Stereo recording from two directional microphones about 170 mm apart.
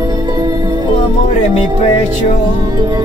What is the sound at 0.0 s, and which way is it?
Music, 20° right (ahead or behind).